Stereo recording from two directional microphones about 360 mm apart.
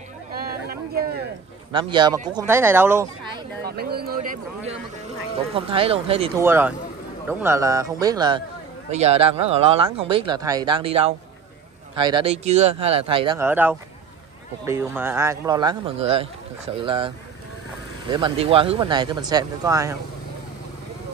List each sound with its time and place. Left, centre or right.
0.4 s a sound: right
1.7 s a man's voice: centre
3.6 s a man's voice: right
18.1 s a man's voice: centre